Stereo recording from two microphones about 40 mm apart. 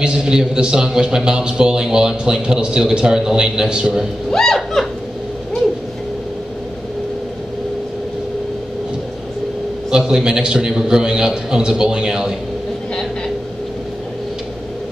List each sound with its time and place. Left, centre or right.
0.0 s a man's voice: right
4.3 s speech: centre
9.8 s a man's voice: centre